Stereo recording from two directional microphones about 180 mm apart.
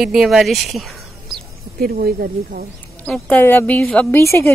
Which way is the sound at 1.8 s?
55° right (ahead or behind).